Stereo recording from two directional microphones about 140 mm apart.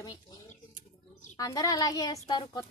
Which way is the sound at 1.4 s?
25° left (ahead or behind).